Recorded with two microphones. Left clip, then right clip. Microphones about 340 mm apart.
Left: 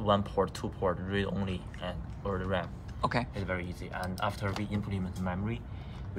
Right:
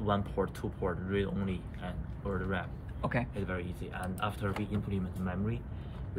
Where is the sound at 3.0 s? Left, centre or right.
Centre.